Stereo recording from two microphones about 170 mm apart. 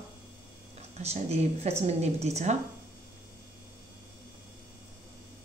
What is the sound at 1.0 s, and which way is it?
Speech, 40° right (ahead or behind).